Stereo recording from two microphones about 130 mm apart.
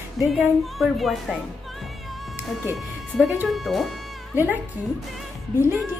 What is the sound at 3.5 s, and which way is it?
Music, centre (ahead or behind).